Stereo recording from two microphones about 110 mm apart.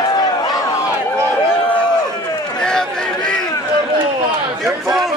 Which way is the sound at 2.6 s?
5° left (ahead or behind).